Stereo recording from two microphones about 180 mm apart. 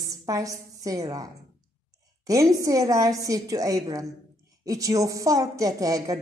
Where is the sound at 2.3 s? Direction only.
20° right (ahead or behind).